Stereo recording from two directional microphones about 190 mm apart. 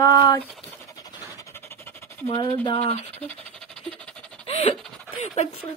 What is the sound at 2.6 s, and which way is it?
Speech, 30° left (ahead or behind).